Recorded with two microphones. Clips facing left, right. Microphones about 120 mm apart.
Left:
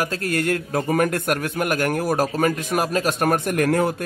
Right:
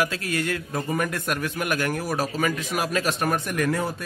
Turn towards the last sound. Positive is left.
turn(degrees=55)  # may be behind; listen again after turning